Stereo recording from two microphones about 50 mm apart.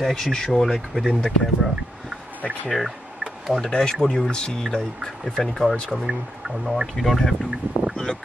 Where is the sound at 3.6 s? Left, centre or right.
Centre.